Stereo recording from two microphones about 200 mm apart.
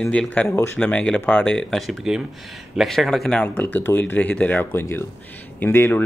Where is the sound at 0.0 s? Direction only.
5° left (ahead or behind).